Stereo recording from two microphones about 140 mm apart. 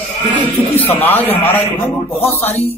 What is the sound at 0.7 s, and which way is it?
A man's voice, 15° left (ahead or behind).